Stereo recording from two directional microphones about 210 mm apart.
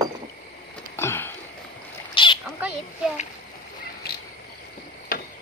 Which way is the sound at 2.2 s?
25° left (ahead or behind).